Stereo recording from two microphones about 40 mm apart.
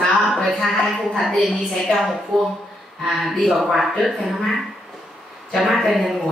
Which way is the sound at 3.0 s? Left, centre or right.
Centre.